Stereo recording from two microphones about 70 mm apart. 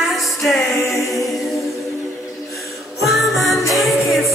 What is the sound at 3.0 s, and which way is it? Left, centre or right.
Music, centre.